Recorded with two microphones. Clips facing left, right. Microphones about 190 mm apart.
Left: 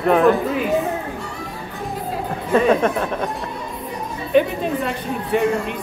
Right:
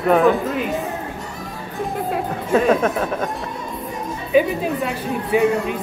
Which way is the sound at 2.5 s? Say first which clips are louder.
Even; centre (ahead or behind).